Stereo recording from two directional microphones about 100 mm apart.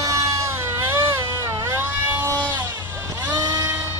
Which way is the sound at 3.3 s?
35° right (ahead or behind).